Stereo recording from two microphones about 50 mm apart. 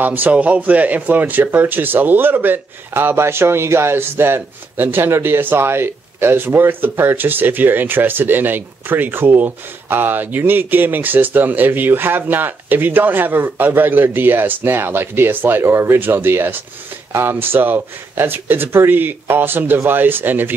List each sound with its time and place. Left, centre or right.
0.0 s speech: right